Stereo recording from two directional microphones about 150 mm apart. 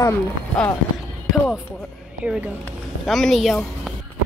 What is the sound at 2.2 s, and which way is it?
A woman's voice, 5° right (ahead or behind).